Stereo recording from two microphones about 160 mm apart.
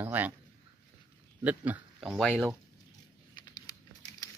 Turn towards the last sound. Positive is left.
turn(degrees=25)  # may be behind; listen again after turning